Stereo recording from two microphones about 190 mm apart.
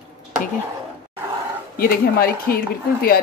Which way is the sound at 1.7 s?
50° left (ahead or behind).